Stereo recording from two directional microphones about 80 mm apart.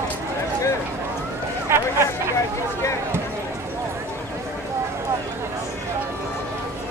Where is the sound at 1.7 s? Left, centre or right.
Right.